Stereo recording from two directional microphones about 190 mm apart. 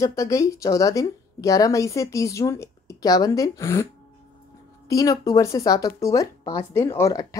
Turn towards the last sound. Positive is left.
turn(degrees=15)  # may be behind; listen again after turning